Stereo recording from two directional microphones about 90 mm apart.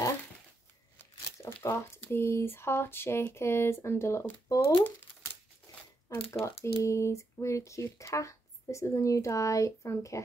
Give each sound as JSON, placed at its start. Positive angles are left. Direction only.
{"t": 0.9, "sound": "speech", "side_deg": 30}
{"t": 6.1, "sound": "speech", "side_deg": 90}
{"t": 6.4, "sound": "speech", "side_deg": 35}